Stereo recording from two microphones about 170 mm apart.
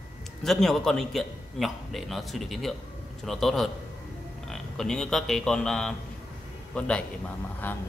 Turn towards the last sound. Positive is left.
turn(degrees=10)  # may be behind; listen again after turning